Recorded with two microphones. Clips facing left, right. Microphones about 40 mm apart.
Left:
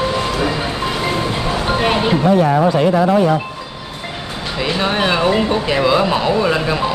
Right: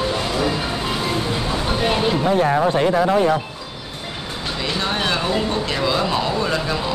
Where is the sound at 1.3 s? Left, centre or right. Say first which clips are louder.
Left 4 dB; left.